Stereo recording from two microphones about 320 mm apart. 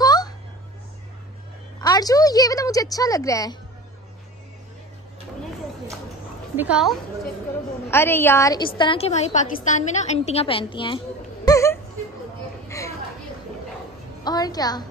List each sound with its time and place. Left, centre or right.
0.0 s a sound: centre
1.8 s a woman's voice: centre
6.5 s a woman's voice: centre
11.4 s music: centre
12.6 s chatter: centre
14.2 s a woman's voice: centre